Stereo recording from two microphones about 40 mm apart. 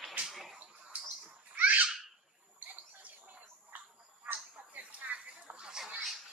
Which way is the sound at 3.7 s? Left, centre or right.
Right.